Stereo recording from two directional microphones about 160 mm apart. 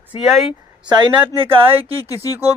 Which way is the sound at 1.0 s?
30° right (ahead or behind).